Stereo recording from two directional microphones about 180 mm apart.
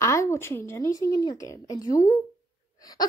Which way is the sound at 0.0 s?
15° left (ahead or behind).